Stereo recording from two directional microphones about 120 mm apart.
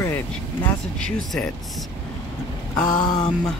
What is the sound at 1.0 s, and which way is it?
Speech, 5° left (ahead or behind).